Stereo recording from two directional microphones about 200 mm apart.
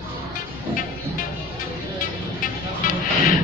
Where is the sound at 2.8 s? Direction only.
40° left (ahead or behind).